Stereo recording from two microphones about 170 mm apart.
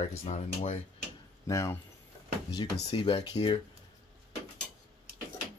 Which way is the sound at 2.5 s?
30° left (ahead or behind).